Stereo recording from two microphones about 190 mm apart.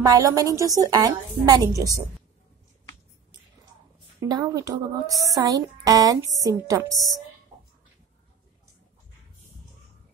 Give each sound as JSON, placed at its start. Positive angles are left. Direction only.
{"t": 0.0, "sound": "a woman's voice", "side_deg": -20}
{"t": 4.2, "sound": "speech", "side_deg": -20}